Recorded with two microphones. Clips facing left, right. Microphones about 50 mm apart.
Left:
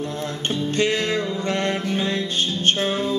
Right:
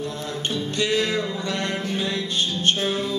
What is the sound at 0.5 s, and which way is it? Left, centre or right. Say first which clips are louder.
Music: left 3 dB; left.